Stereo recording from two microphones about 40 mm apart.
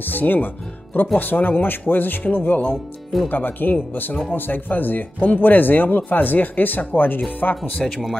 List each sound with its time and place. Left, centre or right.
0.0 s speech: left